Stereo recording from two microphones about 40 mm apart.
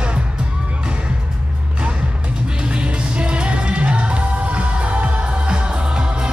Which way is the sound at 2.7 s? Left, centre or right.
Right.